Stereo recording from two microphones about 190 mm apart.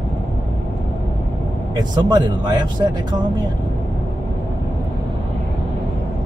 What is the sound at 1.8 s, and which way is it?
Speech, 20° right (ahead or behind).